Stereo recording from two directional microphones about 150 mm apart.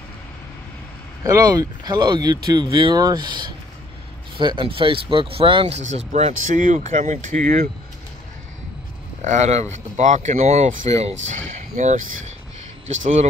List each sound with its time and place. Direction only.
1.2 s speech: 25° right (ahead or behind)
5.8 s speech: 50° right (ahead or behind)
9.2 s speech: 50° right (ahead or behind)